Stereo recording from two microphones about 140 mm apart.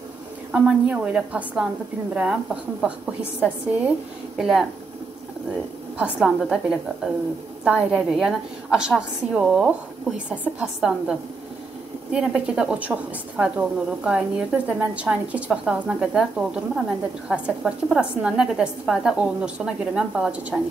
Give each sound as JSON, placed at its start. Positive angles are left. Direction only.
{"t": 0.5, "sound": "a woman's voice", "side_deg": -10}
{"t": 5.9, "sound": "a woman's voice", "side_deg": -5}